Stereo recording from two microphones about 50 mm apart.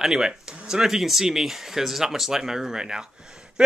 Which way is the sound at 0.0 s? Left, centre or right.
Centre.